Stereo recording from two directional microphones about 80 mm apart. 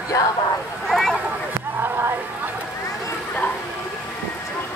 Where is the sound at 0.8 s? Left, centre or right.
Centre.